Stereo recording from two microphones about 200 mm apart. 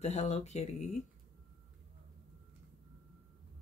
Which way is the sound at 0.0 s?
35° left (ahead or behind).